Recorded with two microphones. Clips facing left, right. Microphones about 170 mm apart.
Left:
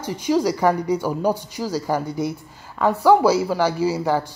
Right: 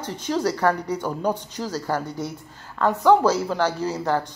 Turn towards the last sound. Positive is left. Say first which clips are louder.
# left 3 dB
turn(degrees=10)  # may be behind; listen again after turning